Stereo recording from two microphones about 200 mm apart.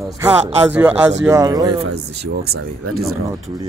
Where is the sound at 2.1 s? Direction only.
55° right (ahead or behind).